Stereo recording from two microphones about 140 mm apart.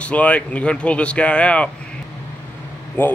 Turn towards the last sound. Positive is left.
turn(degrees=10)  # may be behind; listen again after turning